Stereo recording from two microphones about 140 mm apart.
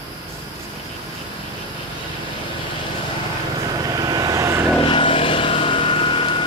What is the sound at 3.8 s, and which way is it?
Vehicle, 30° right (ahead or behind).